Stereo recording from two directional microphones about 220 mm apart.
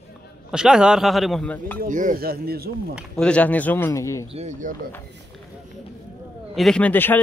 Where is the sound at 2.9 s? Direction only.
Centre (ahead or behind).